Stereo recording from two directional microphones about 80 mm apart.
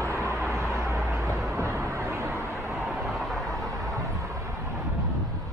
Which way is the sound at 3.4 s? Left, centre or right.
Right.